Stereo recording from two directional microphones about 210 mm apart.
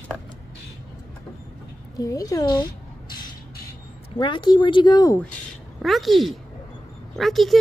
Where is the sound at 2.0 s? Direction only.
15° left (ahead or behind).